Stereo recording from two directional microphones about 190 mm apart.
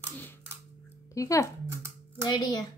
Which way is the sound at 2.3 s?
20° left (ahead or behind).